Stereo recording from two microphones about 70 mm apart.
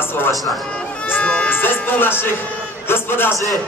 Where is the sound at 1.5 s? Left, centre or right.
Left.